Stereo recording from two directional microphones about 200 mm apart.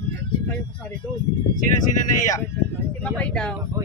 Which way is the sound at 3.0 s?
5° left (ahead or behind).